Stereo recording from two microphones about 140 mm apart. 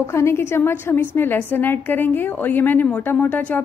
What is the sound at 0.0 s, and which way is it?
A woman's voice, 20° left (ahead or behind).